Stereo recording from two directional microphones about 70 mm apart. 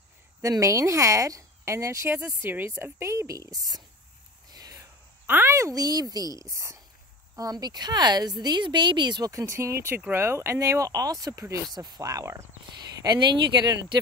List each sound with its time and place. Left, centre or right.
0.4 s speech: right
2.5 s speech: right
4.5 s a sound: right
5.2 s a sound: right
5.5 s a woman's voice: right
7.3 s speech: right
9.3 s speech: right
13.0 s speech: right